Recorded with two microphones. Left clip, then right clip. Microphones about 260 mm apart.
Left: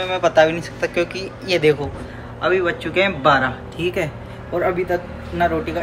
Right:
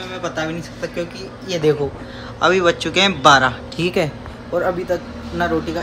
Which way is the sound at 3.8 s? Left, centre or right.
Right.